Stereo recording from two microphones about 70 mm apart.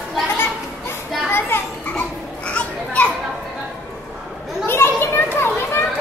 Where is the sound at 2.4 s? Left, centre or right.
Centre.